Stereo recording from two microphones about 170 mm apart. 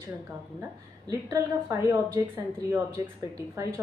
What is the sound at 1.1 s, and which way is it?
A woman's voice, 15° right (ahead or behind).